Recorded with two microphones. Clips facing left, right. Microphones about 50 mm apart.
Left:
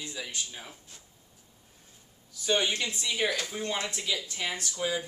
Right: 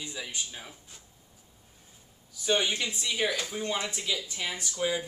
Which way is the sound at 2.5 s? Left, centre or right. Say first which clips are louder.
Even; centre.